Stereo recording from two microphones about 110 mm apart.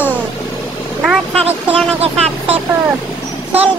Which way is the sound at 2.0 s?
75° right (ahead or behind).